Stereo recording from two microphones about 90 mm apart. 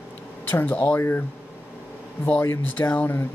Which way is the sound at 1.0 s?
25° left (ahead or behind).